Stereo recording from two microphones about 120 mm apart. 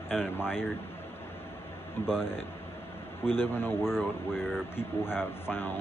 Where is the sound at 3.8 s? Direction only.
5° right (ahead or behind).